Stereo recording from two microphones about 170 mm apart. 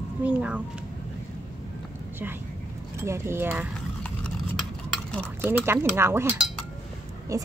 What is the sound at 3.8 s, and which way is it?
Clip-clop, 5° left (ahead or behind).